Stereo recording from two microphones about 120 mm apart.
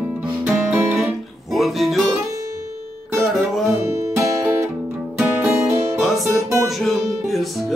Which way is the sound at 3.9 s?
25° right (ahead or behind).